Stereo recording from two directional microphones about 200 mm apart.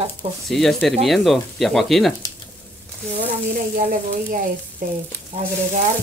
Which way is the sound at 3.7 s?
45° right (ahead or behind).